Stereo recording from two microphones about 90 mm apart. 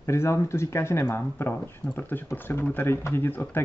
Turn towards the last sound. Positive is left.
turn(degrees=25)  # may be behind; listen again after turning